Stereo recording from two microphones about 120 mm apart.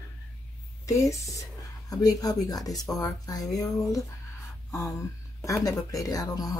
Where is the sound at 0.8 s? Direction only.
25° left (ahead or behind).